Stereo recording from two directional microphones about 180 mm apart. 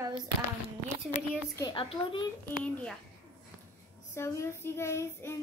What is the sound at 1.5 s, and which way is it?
Speech, 25° left (ahead or behind).